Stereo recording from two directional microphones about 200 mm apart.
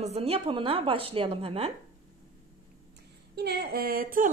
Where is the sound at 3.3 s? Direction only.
50° right (ahead or behind).